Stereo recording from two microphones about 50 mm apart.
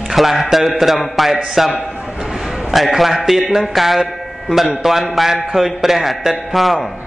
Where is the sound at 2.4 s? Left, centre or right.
Centre.